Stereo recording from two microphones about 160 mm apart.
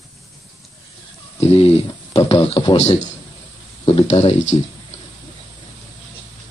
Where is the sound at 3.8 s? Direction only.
40° left (ahead or behind).